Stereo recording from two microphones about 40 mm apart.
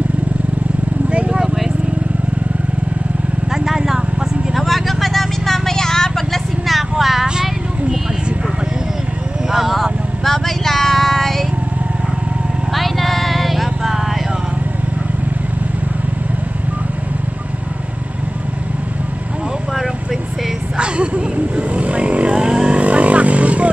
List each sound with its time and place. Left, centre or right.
1.1 s vehicle: right
1.4 s vehicle: centre
3.5 s vehicle: centre
4.6 s a sound: centre
9.5 s vehicle: centre
10.2 s child singing: centre
12.7 s vehicle: centre
20.7 s vehicle: right
22.8 s vehicle: right